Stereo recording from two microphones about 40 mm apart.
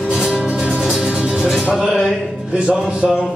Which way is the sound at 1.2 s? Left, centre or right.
Centre.